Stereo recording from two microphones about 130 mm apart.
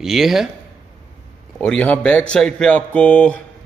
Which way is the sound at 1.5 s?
10° left (ahead or behind).